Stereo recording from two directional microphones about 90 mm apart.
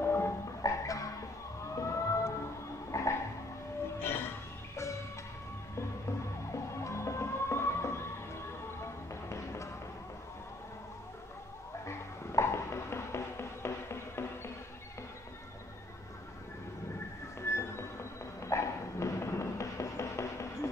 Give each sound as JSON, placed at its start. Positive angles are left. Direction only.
{"t": 0.0, "sound": "music", "side_deg": 30}
{"t": 1.8, "sound": "siren", "side_deg": 35}
{"t": 2.9, "sound": "vehicle", "side_deg": 35}
{"t": 4.0, "sound": "music", "side_deg": 25}
{"t": 11.8, "sound": "music", "side_deg": 30}
{"t": 17.4, "sound": "music", "side_deg": 30}